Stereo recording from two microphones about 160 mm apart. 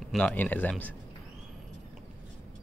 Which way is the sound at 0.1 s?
10° left (ahead or behind).